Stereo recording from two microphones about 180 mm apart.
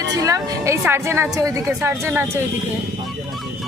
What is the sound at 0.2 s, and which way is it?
A woman's voice, 15° right (ahead or behind).